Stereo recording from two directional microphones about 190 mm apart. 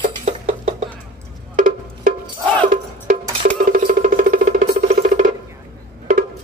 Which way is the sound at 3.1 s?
40° right (ahead or behind).